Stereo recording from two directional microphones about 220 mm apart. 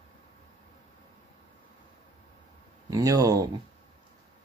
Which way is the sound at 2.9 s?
15° right (ahead or behind).